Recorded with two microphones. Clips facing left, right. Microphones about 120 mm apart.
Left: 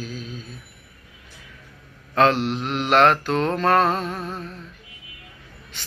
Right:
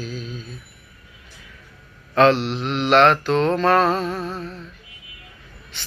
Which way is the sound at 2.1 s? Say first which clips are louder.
Right 2 dB; 40° left (ahead or behind).